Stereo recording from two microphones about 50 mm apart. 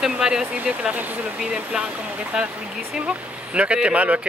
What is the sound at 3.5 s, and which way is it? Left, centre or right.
Speech, right.